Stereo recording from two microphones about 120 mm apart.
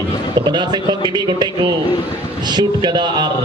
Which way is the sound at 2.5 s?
35° right (ahead or behind).